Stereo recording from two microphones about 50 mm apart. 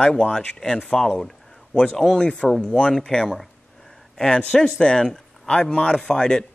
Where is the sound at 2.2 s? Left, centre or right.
Left.